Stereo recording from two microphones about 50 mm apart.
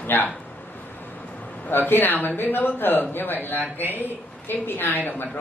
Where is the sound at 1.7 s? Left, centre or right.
Left.